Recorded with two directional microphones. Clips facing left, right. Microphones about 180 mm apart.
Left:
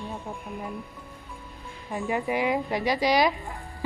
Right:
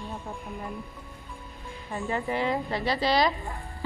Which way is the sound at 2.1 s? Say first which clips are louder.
Left 2 dB; 10° left (ahead or behind).